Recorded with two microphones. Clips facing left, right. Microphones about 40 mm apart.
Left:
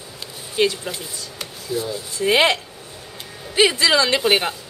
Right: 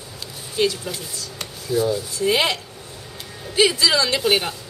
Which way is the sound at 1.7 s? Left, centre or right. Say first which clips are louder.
Right 5 dB; centre.